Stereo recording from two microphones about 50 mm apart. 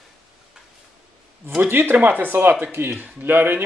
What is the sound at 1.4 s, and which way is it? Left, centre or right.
Speech, right.